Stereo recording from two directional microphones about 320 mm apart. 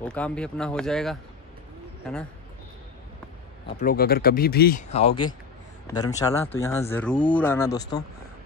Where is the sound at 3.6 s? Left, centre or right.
Left; by 7.8 s centre.